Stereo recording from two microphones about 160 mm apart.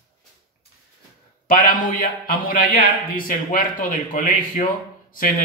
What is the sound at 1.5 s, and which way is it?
Speech, 60° left (ahead or behind).